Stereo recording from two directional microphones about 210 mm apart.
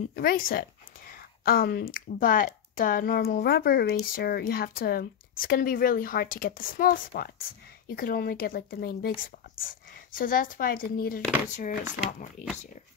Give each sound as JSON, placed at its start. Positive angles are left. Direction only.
{"t": 0.1, "sound": "speech", "side_deg": 45}